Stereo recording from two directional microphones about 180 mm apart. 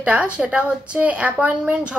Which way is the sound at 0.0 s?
5° right (ahead or behind).